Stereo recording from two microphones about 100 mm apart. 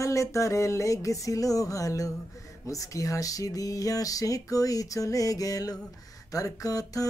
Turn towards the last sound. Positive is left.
turn(degrees=35)  # may be behind; listen again after turning